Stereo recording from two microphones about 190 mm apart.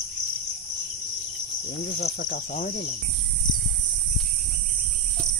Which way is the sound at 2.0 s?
60° left (ahead or behind).